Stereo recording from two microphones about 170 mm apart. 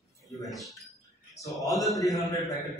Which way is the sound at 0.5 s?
Centre (ahead or behind).